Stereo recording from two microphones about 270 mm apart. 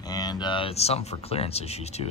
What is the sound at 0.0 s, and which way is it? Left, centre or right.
Speech, centre.